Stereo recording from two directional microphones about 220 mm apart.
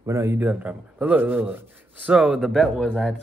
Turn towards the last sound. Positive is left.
turn(degrees=5)  # may be behind; listen again after turning